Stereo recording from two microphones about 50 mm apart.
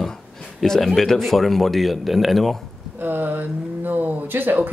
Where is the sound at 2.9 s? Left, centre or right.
Right.